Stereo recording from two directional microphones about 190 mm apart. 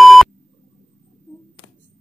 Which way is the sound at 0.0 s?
Centre (ahead or behind).